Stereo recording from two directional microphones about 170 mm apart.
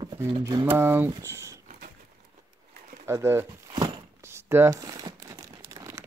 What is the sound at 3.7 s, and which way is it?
Crumpling, 20° right (ahead or behind).